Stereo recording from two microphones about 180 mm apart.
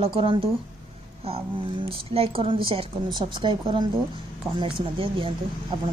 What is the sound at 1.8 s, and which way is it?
Speech, 30° right (ahead or behind).